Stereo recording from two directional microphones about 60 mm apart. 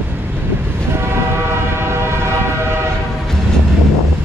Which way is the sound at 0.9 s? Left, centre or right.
Right.